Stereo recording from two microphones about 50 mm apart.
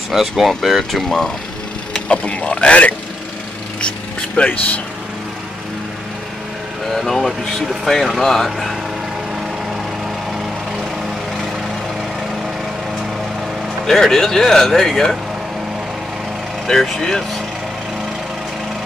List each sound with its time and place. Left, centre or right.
0.1 s speech: centre
2.0 s speech: left
4.4 s speech: left
6.9 s speech: centre
13.8 s speech: centre
16.6 s speech: centre